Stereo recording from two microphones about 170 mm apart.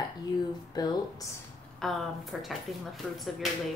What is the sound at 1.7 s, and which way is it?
Speech, centre (ahead or behind).